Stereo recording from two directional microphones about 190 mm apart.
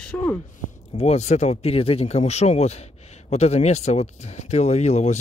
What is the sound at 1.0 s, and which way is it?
Speech, 35° left (ahead or behind).